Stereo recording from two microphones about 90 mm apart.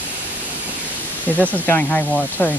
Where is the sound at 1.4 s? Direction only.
15° left (ahead or behind).